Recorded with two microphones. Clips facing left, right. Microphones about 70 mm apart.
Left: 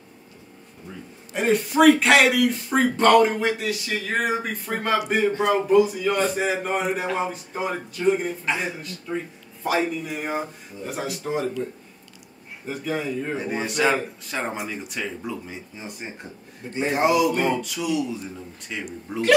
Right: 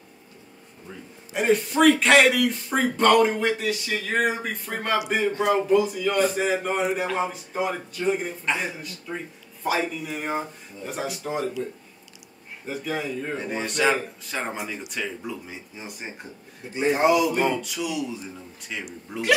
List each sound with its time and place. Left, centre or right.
1.3 s a man's voice: centre
12.6 s a man's voice: centre